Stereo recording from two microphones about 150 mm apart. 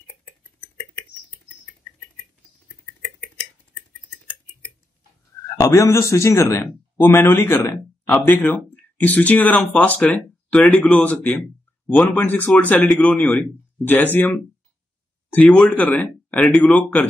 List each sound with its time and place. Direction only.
5.6 s speech: 20° left (ahead or behind)
15.3 s speech: centre (ahead or behind)